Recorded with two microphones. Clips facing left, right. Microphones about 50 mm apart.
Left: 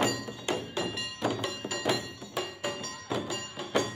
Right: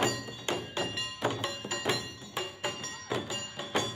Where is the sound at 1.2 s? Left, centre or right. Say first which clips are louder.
Left 2 dB; right.